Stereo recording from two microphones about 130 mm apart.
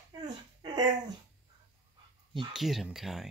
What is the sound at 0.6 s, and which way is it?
Dog, 30° right (ahead or behind).